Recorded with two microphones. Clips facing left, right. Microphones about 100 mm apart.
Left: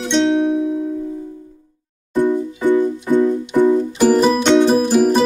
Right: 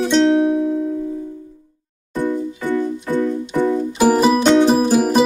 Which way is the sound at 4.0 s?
10° right (ahead or behind).